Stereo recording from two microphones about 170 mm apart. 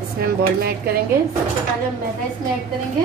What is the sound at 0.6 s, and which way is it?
Speech, 65° right (ahead or behind).